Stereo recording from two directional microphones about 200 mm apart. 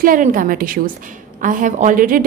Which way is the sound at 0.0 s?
45° right (ahead or behind).